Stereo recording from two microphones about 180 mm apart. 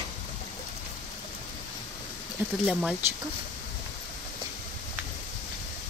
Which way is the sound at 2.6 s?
5° right (ahead or behind).